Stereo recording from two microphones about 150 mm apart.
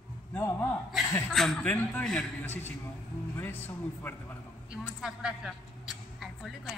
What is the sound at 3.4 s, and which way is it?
Speech, 15° left (ahead or behind).